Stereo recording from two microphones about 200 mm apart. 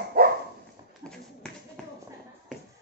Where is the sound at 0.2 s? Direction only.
45° right (ahead or behind).